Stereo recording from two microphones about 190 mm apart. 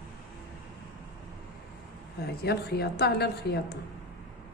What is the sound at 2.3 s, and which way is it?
A woman's voice, 55° left (ahead or behind).